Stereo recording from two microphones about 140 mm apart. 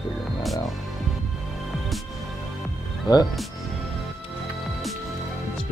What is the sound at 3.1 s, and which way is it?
Speech, 30° left (ahead or behind).